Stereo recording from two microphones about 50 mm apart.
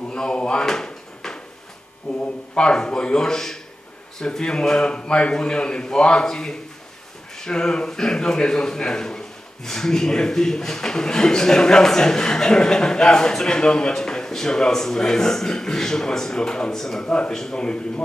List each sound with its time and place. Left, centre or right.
0.1 s drawer open or close: centre
2.1 s a man's voice: left
17.0 s a man's voice: centre